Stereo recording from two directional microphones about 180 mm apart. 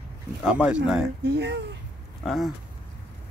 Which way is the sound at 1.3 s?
70° right (ahead or behind).